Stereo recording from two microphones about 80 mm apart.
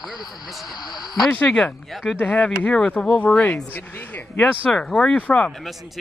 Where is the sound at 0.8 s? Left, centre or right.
Left.